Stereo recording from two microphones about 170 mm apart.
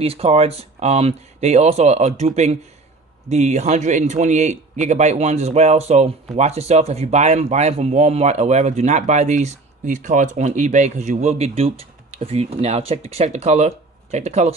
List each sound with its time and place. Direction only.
0.0 s speech: 35° right (ahead or behind)